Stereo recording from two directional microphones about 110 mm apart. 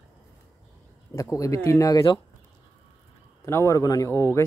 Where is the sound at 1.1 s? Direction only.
30° left (ahead or behind).